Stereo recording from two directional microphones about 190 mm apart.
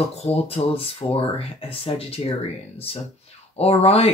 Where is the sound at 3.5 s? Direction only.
35° left (ahead or behind).